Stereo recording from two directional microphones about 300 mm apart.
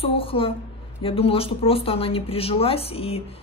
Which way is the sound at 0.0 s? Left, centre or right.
Centre.